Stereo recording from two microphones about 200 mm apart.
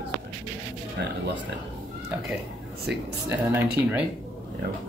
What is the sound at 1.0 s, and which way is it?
Speech, 55° right (ahead or behind).